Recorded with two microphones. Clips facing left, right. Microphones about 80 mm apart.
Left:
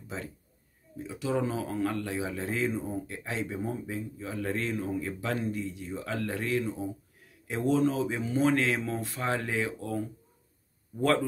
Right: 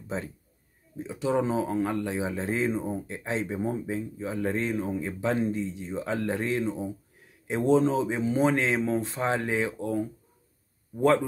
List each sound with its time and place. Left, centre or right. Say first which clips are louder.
0.9 s speech: right 4 dB; right
11.0 s speech: right 4 dB; centre